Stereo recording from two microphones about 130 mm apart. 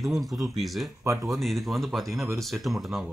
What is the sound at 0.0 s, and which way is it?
Speech, centre (ahead or behind).